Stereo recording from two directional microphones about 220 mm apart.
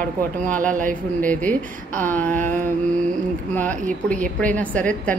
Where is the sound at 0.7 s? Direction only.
35° right (ahead or behind).